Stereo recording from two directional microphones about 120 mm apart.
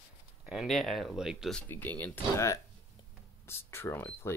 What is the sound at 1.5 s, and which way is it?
Speech, 15° left (ahead or behind).